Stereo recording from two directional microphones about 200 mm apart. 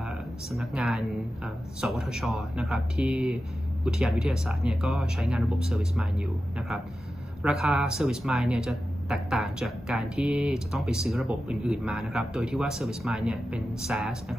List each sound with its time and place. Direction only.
0.5 s speech: centre (ahead or behind)
7.4 s speech: centre (ahead or behind)